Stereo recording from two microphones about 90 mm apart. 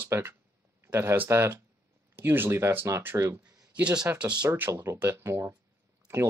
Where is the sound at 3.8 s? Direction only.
10° right (ahead or behind).